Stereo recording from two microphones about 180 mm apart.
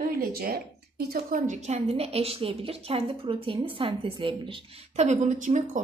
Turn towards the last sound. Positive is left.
turn(degrees=-45)  # may be behind; listen again after turning